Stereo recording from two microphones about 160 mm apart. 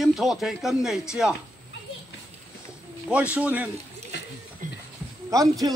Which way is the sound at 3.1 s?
10° right (ahead or behind).